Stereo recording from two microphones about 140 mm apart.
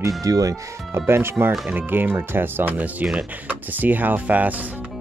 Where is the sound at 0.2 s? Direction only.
25° right (ahead or behind).